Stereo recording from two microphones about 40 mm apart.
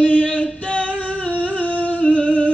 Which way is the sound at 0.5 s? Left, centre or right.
Left.